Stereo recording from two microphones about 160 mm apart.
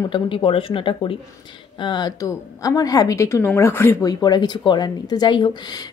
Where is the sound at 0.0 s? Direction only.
30° left (ahead or behind).